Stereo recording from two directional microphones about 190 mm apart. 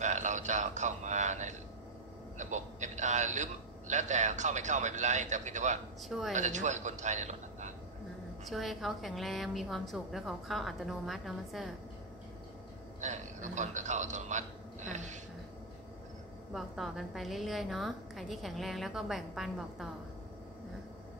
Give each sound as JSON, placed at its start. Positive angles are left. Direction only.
{"t": 0.0, "sound": "a sound", "side_deg": -40}
{"t": 2.3, "sound": "a man's voice", "side_deg": -40}
{"t": 6.0, "sound": "a woman's voice", "side_deg": 0}
{"t": 6.3, "sound": "a man's voice", "side_deg": -40}
{"t": 8.5, "sound": "a woman's voice", "side_deg": 0}
{"t": 13.0, "sound": "a man's voice", "side_deg": -40}
{"t": 16.5, "sound": "a woman's voice", "side_deg": 0}